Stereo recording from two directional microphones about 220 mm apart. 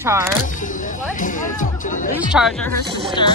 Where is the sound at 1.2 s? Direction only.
35° left (ahead or behind).